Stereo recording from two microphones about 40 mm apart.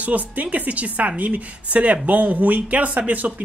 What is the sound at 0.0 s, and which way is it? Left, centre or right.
A woman's voice, right.